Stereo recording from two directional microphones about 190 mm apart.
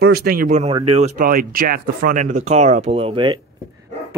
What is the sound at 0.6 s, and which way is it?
Speech, 30° right (ahead or behind).